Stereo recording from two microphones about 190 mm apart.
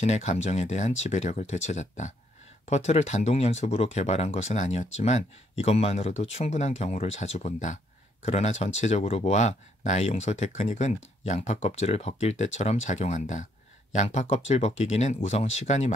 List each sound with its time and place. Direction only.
0.0 s speech: 35° left (ahead or behind)